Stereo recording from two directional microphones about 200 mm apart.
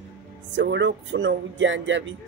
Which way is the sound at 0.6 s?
60° right (ahead or behind).